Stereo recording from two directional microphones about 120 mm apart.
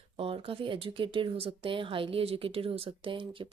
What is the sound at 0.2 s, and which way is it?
Speech, 55° right (ahead or behind).